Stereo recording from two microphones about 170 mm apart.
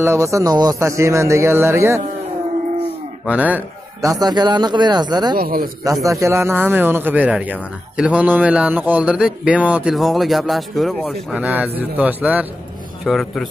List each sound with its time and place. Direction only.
0.0 s speech: 15° right (ahead or behind)
3.3 s a man's voice: 10° right (ahead or behind); by 5.4 s 25° right (ahead or behind)
5.4 s speech: 60° right (ahead or behind)
6.0 s speech: 15° right (ahead or behind); by 13.5 s centre (ahead or behind)